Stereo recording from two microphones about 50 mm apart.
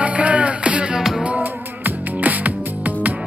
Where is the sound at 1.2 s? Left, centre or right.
Right.